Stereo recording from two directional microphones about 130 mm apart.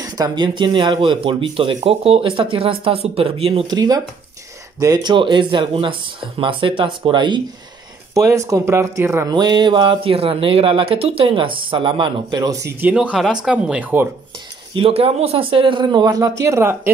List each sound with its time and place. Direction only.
0.0 s speech: 30° right (ahead or behind)
3.6 s speech: 30° right (ahead or behind)
5.1 s speech: 40° right (ahead or behind)
8.1 s speech: 25° right (ahead or behind)
9.3 s speech: 35° right (ahead or behind)
12.9 s speech: 5° right (ahead or behind)
14.7 s speech: 45° right (ahead or behind); by 16.9 s 20° right (ahead or behind)